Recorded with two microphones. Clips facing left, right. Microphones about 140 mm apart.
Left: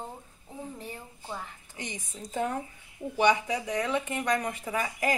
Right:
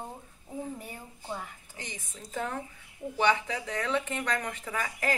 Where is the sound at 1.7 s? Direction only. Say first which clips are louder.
Left 5 dB; 20° left (ahead or behind).